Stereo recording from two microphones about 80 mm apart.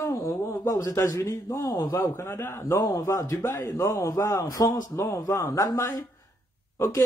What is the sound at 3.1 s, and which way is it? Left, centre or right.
Speech, left.